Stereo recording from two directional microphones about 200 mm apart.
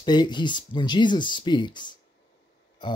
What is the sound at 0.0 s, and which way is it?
Speech, 20° left (ahead or behind).